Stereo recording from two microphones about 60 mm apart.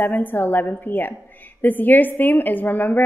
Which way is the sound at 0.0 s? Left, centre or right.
Left.